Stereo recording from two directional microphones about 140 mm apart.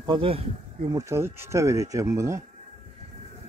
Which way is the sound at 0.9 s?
20° right (ahead or behind).